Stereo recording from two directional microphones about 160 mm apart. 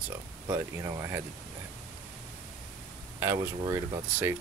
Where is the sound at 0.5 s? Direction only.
20° right (ahead or behind).